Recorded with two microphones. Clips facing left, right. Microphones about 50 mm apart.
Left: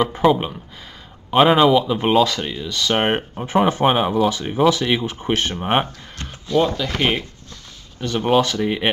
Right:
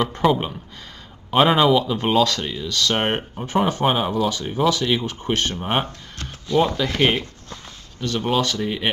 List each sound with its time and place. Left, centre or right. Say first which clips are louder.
0.0 s speech: left 3 dB; centre
6.5 s speech: left 1 dB; centre
8.3 s speech: left 5 dB; centre